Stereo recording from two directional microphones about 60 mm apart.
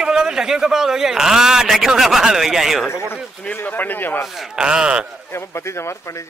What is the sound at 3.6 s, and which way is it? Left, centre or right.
Speech, left.